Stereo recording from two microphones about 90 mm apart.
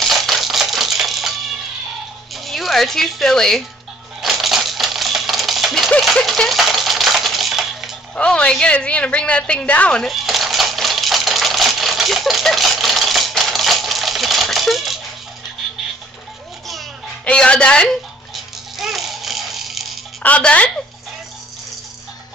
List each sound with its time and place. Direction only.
0.0 s typewriter: centre (ahead or behind)
2.3 s speech: centre (ahead or behind)
4.2 s typewriter: centre (ahead or behind)
5.9 s a sound: 5° left (ahead or behind)
8.2 s a woman's voice: 10° left (ahead or behind)
10.0 s typewriter: centre (ahead or behind)
17.2 s speech: 10° left (ahead or behind)
18.3 s rattle: centre (ahead or behind)
20.2 s speech: 15° left (ahead or behind)